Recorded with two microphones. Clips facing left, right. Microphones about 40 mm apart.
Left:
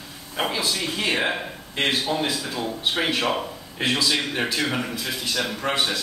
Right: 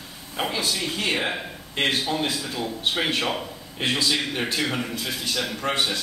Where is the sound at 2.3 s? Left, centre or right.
Left.